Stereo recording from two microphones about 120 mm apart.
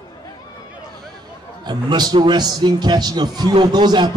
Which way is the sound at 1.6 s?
35° right (ahead or behind).